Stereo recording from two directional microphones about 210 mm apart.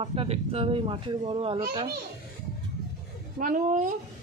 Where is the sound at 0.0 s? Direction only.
25° right (ahead or behind).